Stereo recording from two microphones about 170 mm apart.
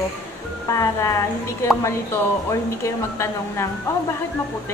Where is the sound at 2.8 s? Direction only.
15° left (ahead or behind).